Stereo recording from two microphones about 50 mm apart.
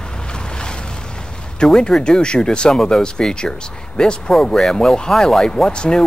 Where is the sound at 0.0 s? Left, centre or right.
Centre.